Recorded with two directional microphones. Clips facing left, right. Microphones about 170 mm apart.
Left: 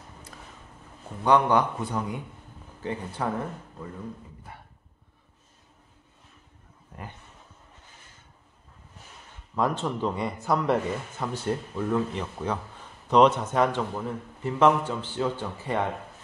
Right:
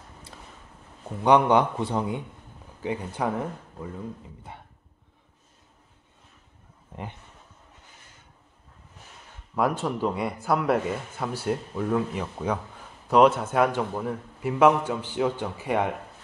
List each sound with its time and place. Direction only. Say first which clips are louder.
1.2 s a man's voice: right 2 dB; 20° right (ahead or behind)
6.9 s a sound: right 4 dB; 25° right (ahead or behind)
9.6 s speech: right 1 dB; 10° right (ahead or behind)